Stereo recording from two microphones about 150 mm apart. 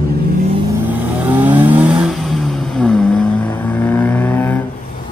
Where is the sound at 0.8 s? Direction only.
10° right (ahead or behind); by 4.6 s 10° left (ahead or behind).